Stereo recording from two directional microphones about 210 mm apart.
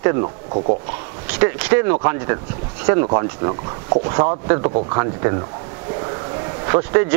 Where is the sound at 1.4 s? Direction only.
15° right (ahead or behind).